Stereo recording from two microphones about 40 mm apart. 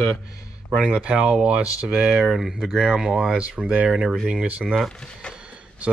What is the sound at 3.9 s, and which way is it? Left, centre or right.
Speech, centre.